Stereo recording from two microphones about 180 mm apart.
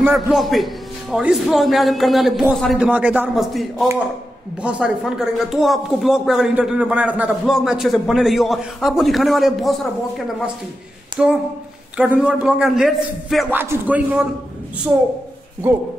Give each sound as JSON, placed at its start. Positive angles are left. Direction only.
{"t": 0.0, "sound": "speech", "side_deg": 0}
{"t": 13.5, "sound": "speech", "side_deg": -10}